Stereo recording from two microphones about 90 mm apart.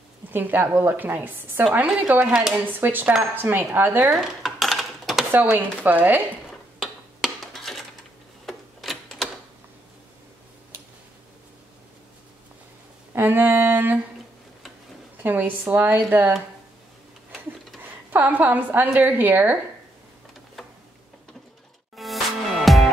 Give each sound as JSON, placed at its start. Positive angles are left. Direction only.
{"t": 0.3, "sound": "a woman's voice", "side_deg": -20}
{"t": 2.3, "sound": "speech", "side_deg": -5}
{"t": 2.6, "sound": "a woman's voice", "side_deg": -20}
{"t": 4.2, "sound": "dishes", "side_deg": 0}
{"t": 5.3, "sound": "a woman's voice", "side_deg": -20}
{"t": 6.8, "sound": "a sound", "side_deg": -5}
{"t": 13.1, "sound": "a sound", "side_deg": -25}
{"t": 15.2, "sound": "a woman's voice", "side_deg": -20}
{"t": 17.8, "sound": "a woman's voice", "side_deg": -20}
{"t": 21.9, "sound": "music", "side_deg": 0}